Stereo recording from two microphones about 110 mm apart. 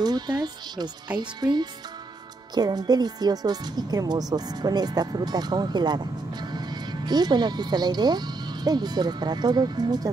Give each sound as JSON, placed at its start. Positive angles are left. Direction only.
{"t": 0.0, "sound": "a woman's voice", "side_deg": -40}